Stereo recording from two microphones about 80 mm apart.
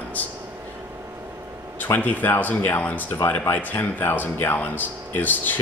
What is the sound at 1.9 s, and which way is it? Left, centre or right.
Speech, left.